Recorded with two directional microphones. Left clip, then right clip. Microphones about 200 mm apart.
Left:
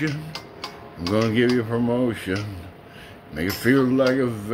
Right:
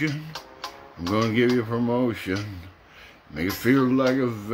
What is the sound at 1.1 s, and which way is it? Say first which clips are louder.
Speech: left 2 dB; 5° right (ahead or behind).